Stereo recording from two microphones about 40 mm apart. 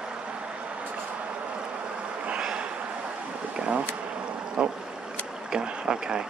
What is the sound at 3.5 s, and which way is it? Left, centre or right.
Bee, right.